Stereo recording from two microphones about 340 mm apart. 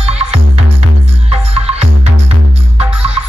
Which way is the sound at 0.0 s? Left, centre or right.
Centre.